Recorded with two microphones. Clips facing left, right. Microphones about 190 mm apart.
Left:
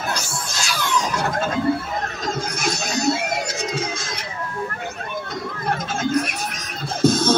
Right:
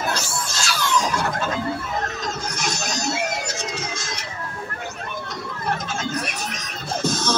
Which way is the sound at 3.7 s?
55° left (ahead or behind).